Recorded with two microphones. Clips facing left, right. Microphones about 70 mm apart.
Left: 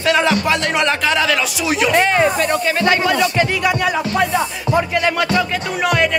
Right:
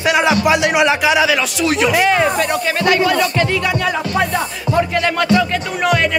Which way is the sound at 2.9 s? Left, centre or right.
Left.